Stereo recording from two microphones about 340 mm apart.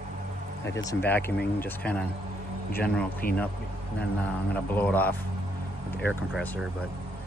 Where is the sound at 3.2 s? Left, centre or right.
Left.